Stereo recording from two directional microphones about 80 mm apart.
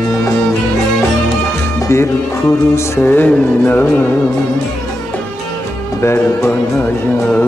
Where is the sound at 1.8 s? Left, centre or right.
Left.